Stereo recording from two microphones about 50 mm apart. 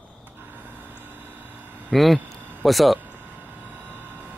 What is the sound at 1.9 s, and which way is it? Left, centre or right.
Speech, centre.